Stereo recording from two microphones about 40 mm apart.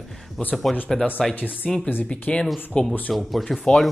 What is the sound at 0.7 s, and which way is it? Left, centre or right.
Speech, centre.